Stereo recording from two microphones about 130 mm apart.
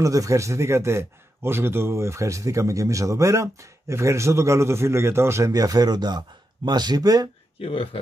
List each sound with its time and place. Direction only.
0.0 s a man's voice: 25° right (ahead or behind)
7.6 s speech: 45° left (ahead or behind)